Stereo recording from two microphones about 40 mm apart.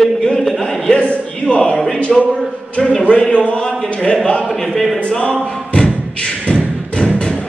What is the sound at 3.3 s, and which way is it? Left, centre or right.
Speech, left.